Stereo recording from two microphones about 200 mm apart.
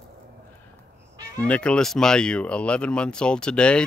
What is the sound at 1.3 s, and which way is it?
Speech, 5° left (ahead or behind).